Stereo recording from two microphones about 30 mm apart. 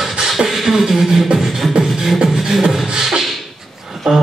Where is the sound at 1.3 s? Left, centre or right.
Right.